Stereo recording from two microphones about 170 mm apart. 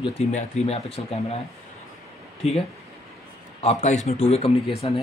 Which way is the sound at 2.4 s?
40° left (ahead or behind).